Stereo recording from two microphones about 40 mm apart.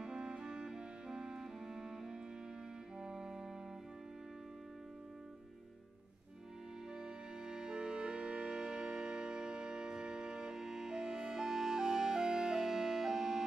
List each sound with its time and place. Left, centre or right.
0.0 s music: centre
7.0 s music: centre